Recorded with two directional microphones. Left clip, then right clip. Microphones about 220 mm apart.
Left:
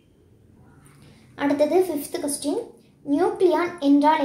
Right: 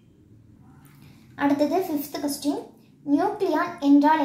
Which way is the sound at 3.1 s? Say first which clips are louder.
Left 3 dB; 15° left (ahead or behind).